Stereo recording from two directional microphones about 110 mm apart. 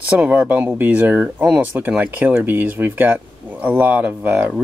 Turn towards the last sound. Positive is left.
turn(degrees=-15)  # may be behind; listen again after turning